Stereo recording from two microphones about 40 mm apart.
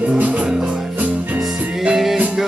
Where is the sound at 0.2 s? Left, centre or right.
Right.